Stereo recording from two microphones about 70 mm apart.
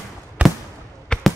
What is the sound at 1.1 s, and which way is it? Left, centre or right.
Basketball bounce, centre.